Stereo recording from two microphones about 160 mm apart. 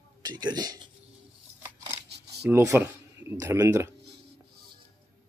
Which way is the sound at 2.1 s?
90° right.